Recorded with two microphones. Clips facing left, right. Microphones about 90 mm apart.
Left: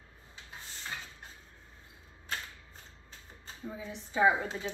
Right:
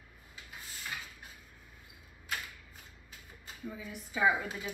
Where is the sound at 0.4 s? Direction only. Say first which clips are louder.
Left 1 dB; 25° left (ahead or behind).